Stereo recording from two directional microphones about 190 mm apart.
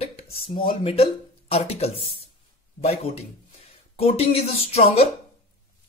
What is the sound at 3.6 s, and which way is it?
Speech, 30° left (ahead or behind).